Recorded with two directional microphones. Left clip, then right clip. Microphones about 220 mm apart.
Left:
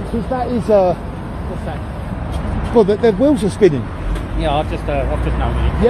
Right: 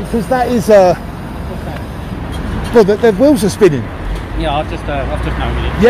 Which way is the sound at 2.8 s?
15° right (ahead or behind).